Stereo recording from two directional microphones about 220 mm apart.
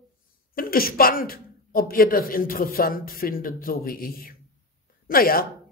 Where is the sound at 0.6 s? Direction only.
40° left (ahead or behind).